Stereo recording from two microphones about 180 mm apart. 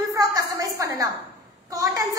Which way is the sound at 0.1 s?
20° right (ahead or behind).